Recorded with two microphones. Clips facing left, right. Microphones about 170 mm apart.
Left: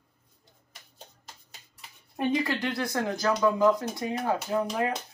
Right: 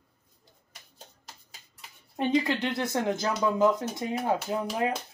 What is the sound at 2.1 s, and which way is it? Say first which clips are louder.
Speech: right 1 dB; 20° right (ahead or behind).